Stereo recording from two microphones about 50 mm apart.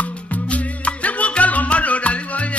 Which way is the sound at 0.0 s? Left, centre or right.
Left.